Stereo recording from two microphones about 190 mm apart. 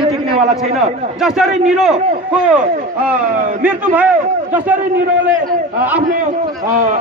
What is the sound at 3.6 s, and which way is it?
Speech, 10° right (ahead or behind).